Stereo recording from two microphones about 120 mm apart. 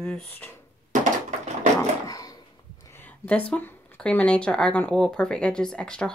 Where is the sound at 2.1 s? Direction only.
30° left (ahead or behind).